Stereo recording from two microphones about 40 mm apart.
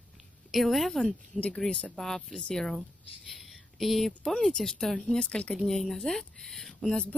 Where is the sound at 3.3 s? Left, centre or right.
Centre.